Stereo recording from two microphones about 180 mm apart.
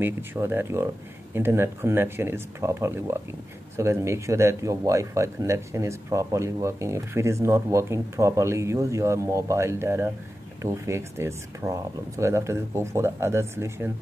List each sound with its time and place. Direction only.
0.0 s speech: 10° right (ahead or behind)